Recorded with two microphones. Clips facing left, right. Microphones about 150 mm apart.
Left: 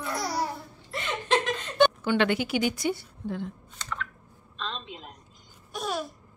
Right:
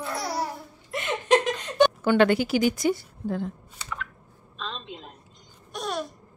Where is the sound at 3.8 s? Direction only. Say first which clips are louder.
Even; 5° right (ahead or behind).